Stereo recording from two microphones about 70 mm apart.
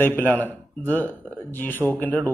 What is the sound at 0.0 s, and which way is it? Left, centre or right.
A man's voice, left.